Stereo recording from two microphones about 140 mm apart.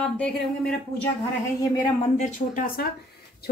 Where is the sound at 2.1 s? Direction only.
70° left (ahead or behind).